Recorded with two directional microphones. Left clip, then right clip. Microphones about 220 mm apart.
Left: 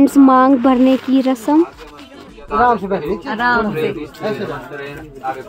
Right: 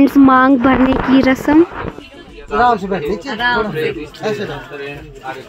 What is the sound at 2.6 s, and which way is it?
Speech, 45° right (ahead or behind).